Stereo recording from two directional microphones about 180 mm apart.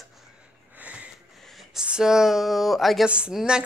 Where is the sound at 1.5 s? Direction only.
5° right (ahead or behind).